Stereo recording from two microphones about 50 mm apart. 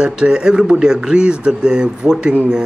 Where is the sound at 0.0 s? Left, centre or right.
Centre.